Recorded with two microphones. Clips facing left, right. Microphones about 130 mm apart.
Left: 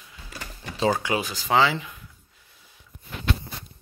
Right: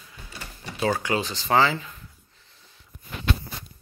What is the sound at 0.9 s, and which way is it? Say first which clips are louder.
Speech: left 1 dB; 15° left (ahead or behind).